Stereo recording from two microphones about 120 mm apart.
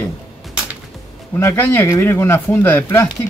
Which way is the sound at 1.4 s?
20° left (ahead or behind).